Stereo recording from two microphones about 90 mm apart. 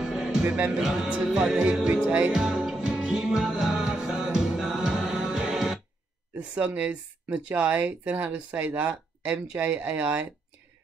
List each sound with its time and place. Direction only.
0.0 s music: 5° right (ahead or behind)
6.5 s speech: 15° right (ahead or behind)